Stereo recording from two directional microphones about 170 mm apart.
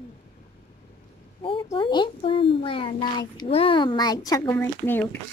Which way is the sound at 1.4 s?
30° left (ahead or behind).